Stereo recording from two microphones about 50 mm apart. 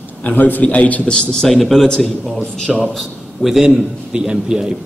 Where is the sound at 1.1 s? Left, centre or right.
Centre.